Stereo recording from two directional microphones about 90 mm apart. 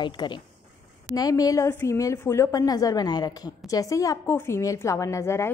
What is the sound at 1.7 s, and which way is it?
A woman's voice, 30° left (ahead or behind).